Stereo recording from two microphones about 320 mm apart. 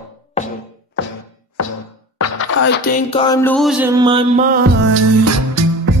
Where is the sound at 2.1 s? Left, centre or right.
Left.